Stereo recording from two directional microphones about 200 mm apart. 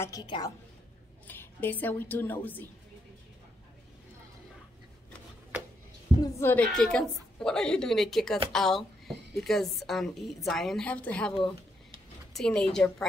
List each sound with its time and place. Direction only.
0.0 s a woman's voice: 20° left (ahead or behind)
1.2 s a woman's voice: 10° left (ahead or behind)
6.2 s a woman's voice: 10° left (ahead or behind)
12.4 s a woman's voice: 5° left (ahead or behind)